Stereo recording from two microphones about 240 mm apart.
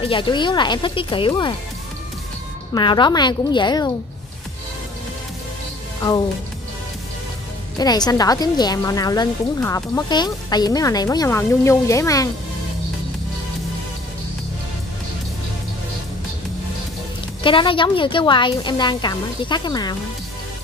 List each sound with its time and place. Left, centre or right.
0.0 s a woman's voice: left
2.7 s a woman's voice: centre
7.8 s a woman's voice: centre
17.4 s a woman's voice: left